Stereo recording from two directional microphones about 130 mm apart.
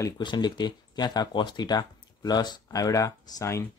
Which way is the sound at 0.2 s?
35° left (ahead or behind).